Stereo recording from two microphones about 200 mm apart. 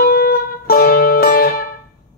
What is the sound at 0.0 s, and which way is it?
Music, 50° left (ahead or behind).